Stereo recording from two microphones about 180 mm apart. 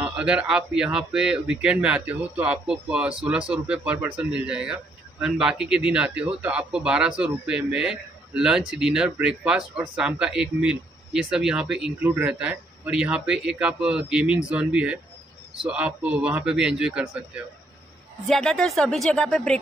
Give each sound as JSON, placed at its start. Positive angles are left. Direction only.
{"t": 0.0, "sound": "a man's voice", "side_deg": -5}
{"t": 18.2, "sound": "a man's voice", "side_deg": 5}